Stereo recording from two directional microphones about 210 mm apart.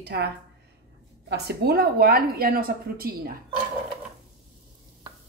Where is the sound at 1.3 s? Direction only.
50° right (ahead or behind).